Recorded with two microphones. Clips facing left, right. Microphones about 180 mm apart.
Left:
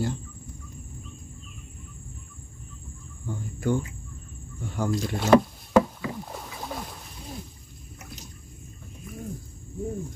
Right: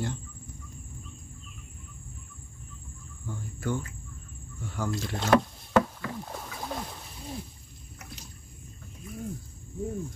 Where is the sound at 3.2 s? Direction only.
15° left (ahead or behind).